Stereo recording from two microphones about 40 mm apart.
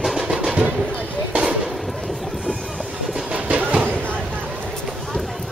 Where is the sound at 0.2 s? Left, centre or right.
Right.